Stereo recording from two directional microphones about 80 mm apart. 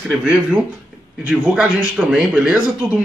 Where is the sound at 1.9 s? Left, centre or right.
Centre.